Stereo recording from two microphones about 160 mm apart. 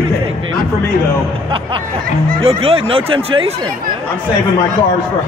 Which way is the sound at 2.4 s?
35° right (ahead or behind).